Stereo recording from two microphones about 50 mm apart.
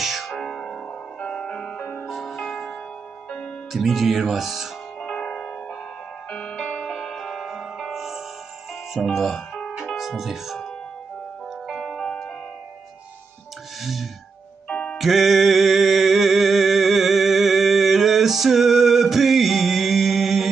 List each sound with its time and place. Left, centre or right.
0.0 s music: centre
0.3 s music: centre
1.8 s music: left
2.0 s music: centre
3.7 s speech: centre
5.0 s music: centre
8.9 s speech: centre
11.6 s music: centre
13.7 s music: centre
14.7 s music: left
15.0 s music: centre